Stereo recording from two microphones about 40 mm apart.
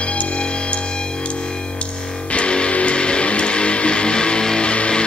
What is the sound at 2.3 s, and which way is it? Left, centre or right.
Music, left.